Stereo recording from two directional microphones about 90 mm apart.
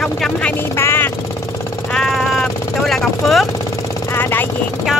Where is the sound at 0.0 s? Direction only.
5° left (ahead or behind).